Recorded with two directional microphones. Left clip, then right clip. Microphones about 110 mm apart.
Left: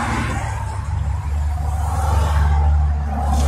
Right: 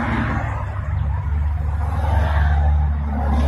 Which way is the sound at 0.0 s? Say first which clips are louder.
Even; 25° left (ahead or behind).